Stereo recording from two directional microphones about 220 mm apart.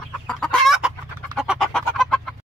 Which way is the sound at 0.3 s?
5° left (ahead or behind).